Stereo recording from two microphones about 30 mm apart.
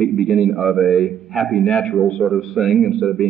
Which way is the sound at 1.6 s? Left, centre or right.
Left.